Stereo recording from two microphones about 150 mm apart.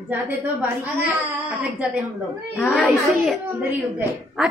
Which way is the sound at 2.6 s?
10° left (ahead or behind).